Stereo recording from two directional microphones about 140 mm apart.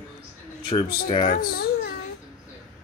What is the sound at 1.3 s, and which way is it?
Speech, 90° left.